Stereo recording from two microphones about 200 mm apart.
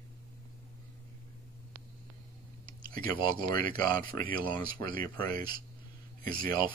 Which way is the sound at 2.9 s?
45° right (ahead or behind).